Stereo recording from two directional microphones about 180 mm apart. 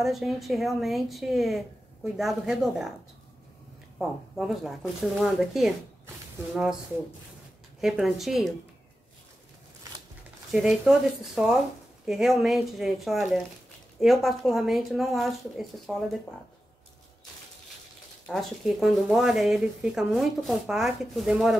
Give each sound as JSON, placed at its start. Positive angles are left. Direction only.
{"t": 0.0, "sound": "speech", "side_deg": 0}
{"t": 4.0, "sound": "speech", "side_deg": 0}
{"t": 7.8, "sound": "speech", "side_deg": 0}
{"t": 10.5, "sound": "speech", "side_deg": -5}
{"t": 18.2, "sound": "speech", "side_deg": 0}